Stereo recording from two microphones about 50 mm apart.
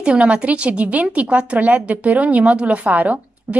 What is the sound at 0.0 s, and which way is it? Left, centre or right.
Speech, centre.